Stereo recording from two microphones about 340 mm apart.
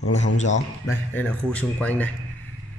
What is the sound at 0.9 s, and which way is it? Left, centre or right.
Speech, centre.